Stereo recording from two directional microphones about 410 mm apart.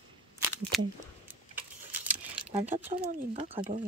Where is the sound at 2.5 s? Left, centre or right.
Centre.